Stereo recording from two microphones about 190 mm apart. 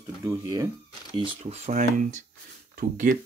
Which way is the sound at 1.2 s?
35° right (ahead or behind).